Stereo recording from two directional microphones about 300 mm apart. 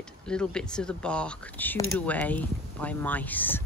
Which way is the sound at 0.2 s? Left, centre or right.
Centre.